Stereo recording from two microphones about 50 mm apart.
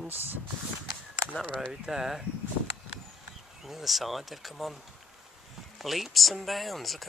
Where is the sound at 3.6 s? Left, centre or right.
Centre.